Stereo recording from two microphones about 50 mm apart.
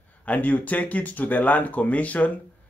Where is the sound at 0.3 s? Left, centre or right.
Left.